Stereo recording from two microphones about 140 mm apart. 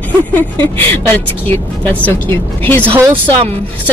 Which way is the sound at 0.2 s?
10° left (ahead or behind).